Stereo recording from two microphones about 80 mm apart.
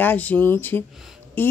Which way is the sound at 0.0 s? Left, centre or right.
Left.